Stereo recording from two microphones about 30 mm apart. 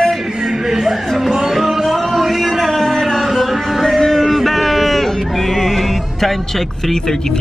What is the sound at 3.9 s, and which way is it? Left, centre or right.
Music, centre.